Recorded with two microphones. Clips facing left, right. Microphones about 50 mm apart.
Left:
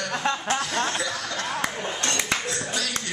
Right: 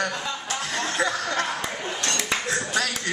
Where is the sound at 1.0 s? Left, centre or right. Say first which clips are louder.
Right 5 dB; right.